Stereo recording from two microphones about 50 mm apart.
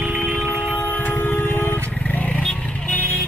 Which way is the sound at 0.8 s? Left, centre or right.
Left.